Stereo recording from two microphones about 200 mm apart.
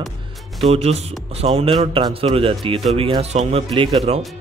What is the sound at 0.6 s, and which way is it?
Speech, 30° right (ahead or behind).